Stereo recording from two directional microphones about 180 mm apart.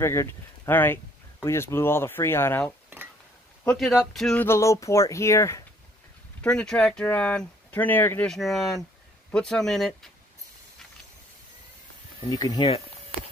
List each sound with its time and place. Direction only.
0.0 s speech: 15° left (ahead or behind)
3.6 s speech: centre (ahead or behind); by 5.6 s 15° left (ahead or behind)
6.4 s speech: 5° left (ahead or behind)
12.2 s speech: 20° left (ahead or behind)